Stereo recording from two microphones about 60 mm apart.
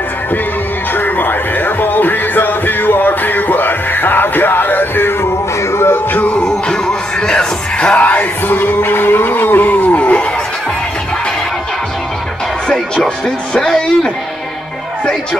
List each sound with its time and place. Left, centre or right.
0.9 s music: left
6.1 s music: left
6.4 s music: centre
12.9 s speech: centre